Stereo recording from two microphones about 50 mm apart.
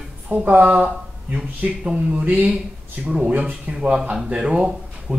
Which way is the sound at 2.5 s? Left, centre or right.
Centre.